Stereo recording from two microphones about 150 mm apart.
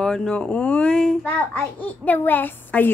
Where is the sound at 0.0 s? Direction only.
5° left (ahead or behind).